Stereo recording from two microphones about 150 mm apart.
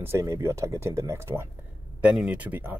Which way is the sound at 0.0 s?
20° right (ahead or behind).